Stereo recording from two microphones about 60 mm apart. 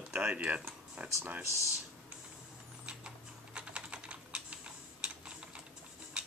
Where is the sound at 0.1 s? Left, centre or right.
Centre.